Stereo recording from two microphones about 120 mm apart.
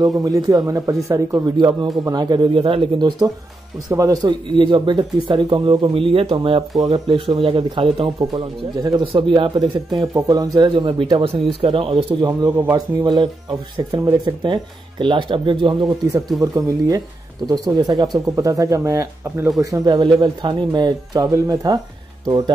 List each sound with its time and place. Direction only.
0.0 s speech: 30° right (ahead or behind)
1.6 s speech: 40° right (ahead or behind)
2.5 s speech: 45° right (ahead or behind)
3.9 s speech: 30° right (ahead or behind); by 8.1 s 50° right (ahead or behind)
8.2 s speech: 35° right (ahead or behind)
10.1 s speech: 30° right (ahead or behind); by 12.3 s 50° right (ahead or behind)
12.3 s speech: 35° right (ahead or behind)
16.3 s speech: 30° right (ahead or behind)